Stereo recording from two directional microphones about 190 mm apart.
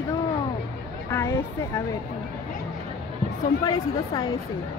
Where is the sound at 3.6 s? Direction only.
20° left (ahead or behind).